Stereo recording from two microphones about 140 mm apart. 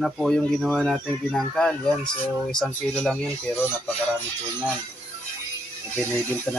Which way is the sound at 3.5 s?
15° left (ahead or behind).